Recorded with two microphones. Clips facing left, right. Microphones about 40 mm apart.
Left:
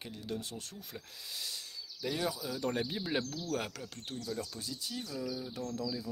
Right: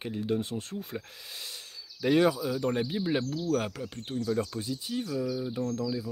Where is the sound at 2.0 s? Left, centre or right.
Right.